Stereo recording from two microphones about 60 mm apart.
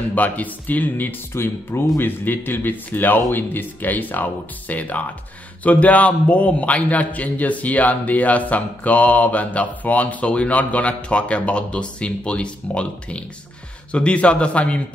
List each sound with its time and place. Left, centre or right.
0.1 s a man's voice: left